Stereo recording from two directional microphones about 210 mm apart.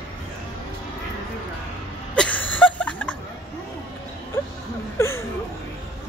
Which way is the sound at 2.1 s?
5° left (ahead or behind).